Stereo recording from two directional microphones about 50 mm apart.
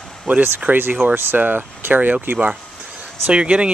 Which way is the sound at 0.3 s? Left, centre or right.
Right.